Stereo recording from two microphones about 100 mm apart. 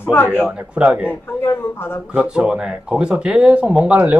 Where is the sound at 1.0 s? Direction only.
25° left (ahead or behind).